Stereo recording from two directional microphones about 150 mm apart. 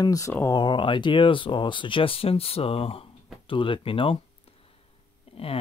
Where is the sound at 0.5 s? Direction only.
30° left (ahead or behind).